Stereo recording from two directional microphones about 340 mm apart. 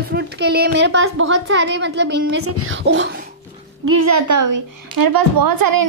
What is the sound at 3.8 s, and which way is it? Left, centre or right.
A woman's voice, right.